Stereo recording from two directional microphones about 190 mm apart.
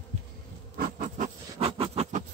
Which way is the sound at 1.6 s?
30° right (ahead or behind).